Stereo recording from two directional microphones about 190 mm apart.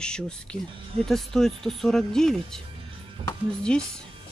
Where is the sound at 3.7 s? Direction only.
5° left (ahead or behind).